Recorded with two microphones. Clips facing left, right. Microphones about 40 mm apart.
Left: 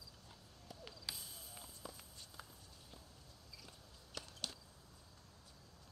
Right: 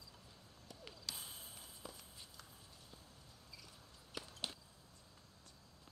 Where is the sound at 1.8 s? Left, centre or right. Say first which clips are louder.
Even; centre.